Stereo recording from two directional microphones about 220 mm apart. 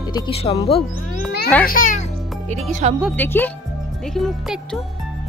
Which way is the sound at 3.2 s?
10° left (ahead or behind).